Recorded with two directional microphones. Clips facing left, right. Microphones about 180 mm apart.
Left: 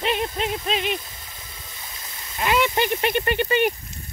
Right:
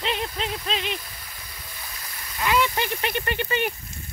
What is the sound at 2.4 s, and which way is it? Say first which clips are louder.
Speech: left 2 dB; 20° left (ahead or behind).